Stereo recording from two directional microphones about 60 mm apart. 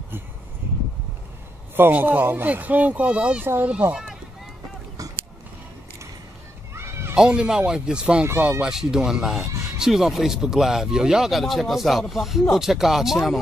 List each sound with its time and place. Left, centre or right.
1.8 s speech: right
6.7 s children playing: right
7.2 s speech: centre